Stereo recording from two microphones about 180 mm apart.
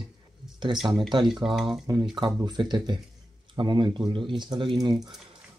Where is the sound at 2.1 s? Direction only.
25° right (ahead or behind).